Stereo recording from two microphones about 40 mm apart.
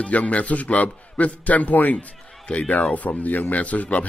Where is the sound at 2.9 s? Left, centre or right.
Left.